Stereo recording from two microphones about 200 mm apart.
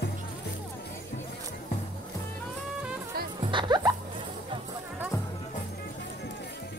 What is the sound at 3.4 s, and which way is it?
Music, 20° right (ahead or behind).